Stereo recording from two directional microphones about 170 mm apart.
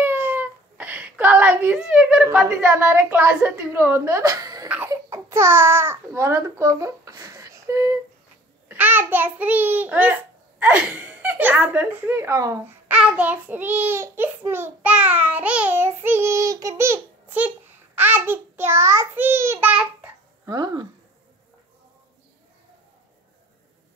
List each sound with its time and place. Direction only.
0.0 s a sound: 15° right (ahead or behind)
2.3 s a woman's voice: 10° right (ahead or behind)
4.6 s a child's voice: 10° right (ahead or behind)
20.4 s speech: 25° right (ahead or behind)